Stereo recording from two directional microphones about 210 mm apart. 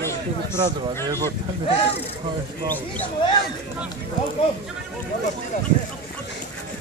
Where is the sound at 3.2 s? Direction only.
20° left (ahead or behind).